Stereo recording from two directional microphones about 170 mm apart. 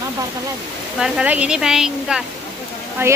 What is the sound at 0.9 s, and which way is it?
A woman's voice, 5° right (ahead or behind).